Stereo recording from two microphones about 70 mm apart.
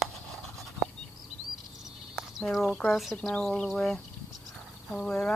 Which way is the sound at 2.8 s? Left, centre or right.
Centre.